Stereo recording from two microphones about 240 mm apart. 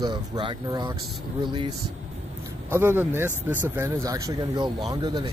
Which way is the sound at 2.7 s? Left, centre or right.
Centre.